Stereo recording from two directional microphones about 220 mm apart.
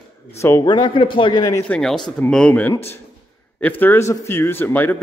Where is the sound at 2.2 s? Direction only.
5° left (ahead or behind).